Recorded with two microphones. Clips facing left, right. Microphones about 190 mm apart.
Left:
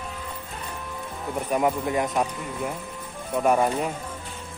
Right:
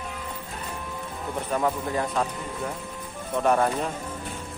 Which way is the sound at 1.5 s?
15° left (ahead or behind).